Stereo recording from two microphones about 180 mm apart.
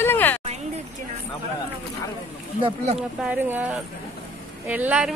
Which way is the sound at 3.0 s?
10° right (ahead or behind).